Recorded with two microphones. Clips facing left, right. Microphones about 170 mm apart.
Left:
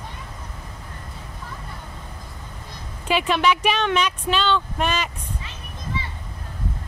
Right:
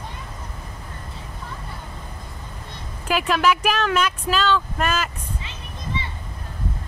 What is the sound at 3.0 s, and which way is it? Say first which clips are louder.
Speech: even; 5° right (ahead or behind).